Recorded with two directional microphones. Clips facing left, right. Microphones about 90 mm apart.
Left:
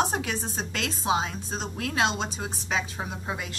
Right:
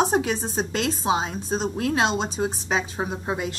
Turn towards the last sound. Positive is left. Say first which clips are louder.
# right 6 dB
turn(degrees=-30)  # may be behind; listen again after turning